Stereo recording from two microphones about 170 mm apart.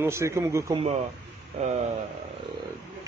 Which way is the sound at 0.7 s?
35° right (ahead or behind).